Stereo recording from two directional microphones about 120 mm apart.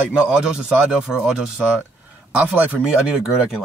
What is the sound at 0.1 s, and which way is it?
Speech, 10° right (ahead or behind).